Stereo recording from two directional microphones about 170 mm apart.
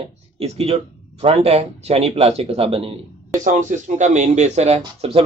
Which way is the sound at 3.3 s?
50° right (ahead or behind).